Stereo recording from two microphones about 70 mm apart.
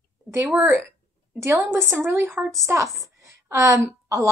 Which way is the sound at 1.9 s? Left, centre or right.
Right.